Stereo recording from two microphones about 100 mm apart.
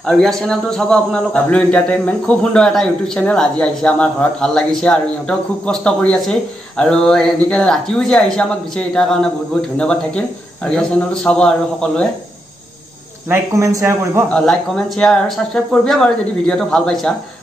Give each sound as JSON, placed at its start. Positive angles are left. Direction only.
{"t": 0.0, "sound": "a man's voice", "side_deg": 5}
{"t": 13.3, "sound": "speech", "side_deg": -30}
{"t": 14.3, "sound": "a man's voice", "side_deg": 10}